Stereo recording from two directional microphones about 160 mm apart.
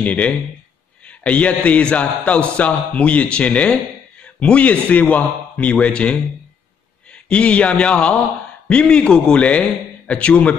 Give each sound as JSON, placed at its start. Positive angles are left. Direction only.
{"t": 0.0, "sound": "a man's voice", "side_deg": 10}
{"t": 7.2, "sound": "a man's voice", "side_deg": 5}